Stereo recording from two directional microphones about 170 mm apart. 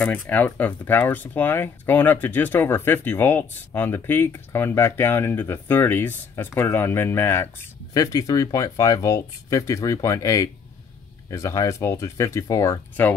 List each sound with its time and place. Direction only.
0.0 s speech: 10° left (ahead or behind)